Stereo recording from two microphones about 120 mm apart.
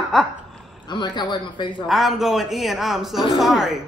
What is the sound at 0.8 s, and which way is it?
A man's voice, 40° left (ahead or behind).